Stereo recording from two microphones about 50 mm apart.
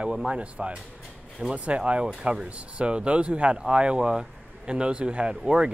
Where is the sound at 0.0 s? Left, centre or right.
Right.